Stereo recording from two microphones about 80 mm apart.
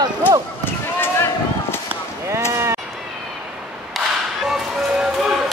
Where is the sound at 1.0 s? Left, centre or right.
Left.